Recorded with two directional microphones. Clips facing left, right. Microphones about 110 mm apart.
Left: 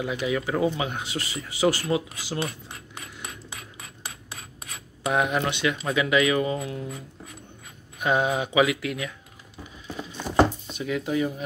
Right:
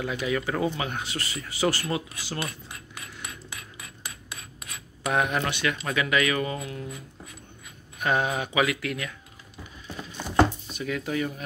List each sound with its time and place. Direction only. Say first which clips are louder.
0.0 s speech: left 1 dB; 15° left (ahead or behind)
3.7 s filing: left 1 dB; 30° left (ahead or behind)
5.1 s speech: left 2 dB; 15° left (ahead or behind)
8.0 s speech: left 2 dB; 15° left (ahead or behind)
9.8 s a sound: left 3 dB; 20° left (ahead or behind)